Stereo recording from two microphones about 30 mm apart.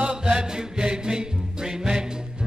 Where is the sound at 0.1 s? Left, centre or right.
Right.